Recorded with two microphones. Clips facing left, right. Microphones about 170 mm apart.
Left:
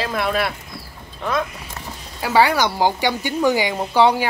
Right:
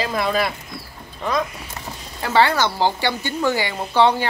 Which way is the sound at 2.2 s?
10° left (ahead or behind).